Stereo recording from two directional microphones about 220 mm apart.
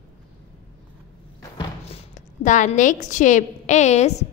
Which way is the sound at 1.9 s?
35° left (ahead or behind).